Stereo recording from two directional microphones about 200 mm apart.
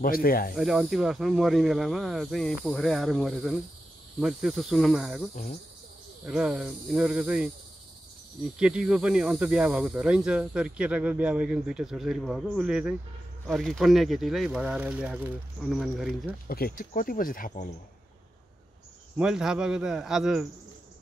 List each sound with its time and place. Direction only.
0.0 s speech: 45° left (ahead or behind)
0.6 s speech: centre (ahead or behind)
5.3 s cricket: 40° left (ahead or behind)
6.2 s speech: 5° right (ahead or behind)
8.5 s speech: 5° right (ahead or behind)
16.4 s speech: 50° left (ahead or behind)
19.1 s speech: 5° right (ahead or behind)